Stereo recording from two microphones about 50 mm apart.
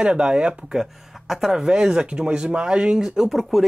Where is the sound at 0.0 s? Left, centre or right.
Centre.